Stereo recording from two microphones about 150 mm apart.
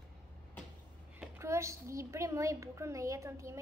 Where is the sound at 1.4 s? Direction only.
20° right (ahead or behind).